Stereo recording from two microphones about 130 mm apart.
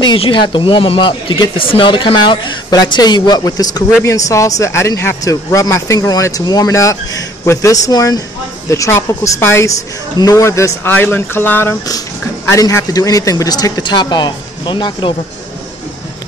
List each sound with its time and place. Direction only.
0.0 s speech: 40° left (ahead or behind)